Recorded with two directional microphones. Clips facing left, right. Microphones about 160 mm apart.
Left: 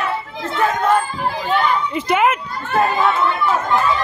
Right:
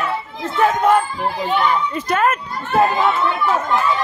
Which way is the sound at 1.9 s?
15° left (ahead or behind).